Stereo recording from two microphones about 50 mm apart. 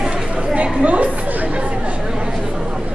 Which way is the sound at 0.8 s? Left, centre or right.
Right.